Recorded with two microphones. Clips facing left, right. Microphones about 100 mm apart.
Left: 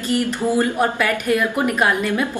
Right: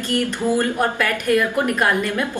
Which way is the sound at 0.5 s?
15° left (ahead or behind).